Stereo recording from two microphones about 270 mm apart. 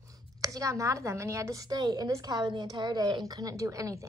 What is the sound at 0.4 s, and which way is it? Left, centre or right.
A woman's voice, centre.